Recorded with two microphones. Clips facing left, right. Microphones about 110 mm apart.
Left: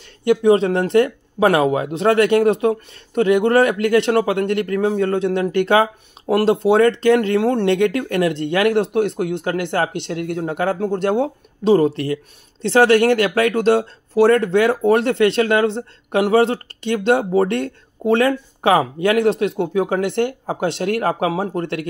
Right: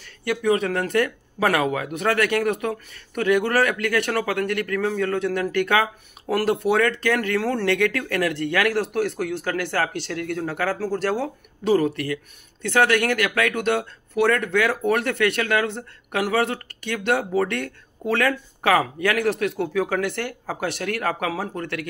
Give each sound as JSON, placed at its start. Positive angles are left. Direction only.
{"t": 0.0, "sound": "speech", "side_deg": 20}